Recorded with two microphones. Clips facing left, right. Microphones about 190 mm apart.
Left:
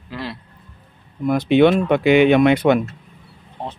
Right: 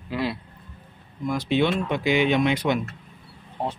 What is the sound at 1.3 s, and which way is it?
Speech, 60° left (ahead or behind).